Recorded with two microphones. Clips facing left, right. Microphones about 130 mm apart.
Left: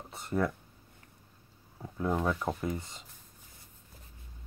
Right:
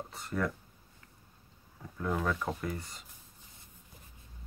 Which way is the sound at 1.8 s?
30° left (ahead or behind).